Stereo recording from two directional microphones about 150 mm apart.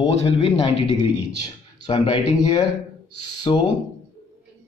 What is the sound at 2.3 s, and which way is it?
Speech, 25° left (ahead or behind).